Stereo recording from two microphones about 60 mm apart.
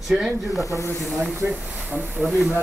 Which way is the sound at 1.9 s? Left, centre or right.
Right.